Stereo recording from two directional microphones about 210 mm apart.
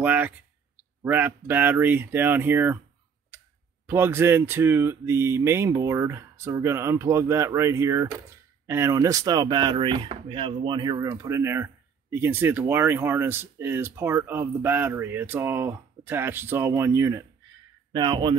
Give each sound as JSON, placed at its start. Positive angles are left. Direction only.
{"t": 0.0, "sound": "speech", "side_deg": -5}
{"t": 3.8, "sound": "speech", "side_deg": -10}